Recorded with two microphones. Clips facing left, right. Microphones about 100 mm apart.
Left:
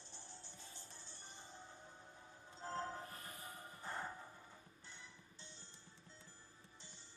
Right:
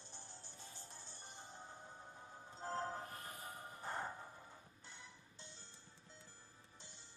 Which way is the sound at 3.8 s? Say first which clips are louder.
Right 2 dB; 30° right (ahead or behind).